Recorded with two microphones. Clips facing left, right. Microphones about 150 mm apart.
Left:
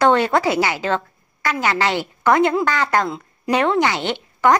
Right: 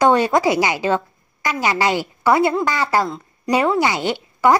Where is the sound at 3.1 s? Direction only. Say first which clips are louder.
Left 1 dB; 5° left (ahead or behind).